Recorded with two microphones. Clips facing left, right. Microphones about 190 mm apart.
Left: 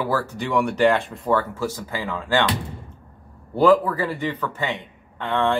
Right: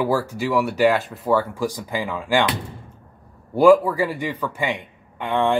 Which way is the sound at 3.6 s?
10° right (ahead or behind).